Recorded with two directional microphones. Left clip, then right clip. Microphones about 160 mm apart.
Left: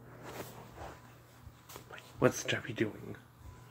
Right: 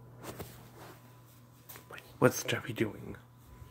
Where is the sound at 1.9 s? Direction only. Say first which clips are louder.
Right 2 dB; 40° right (ahead or behind).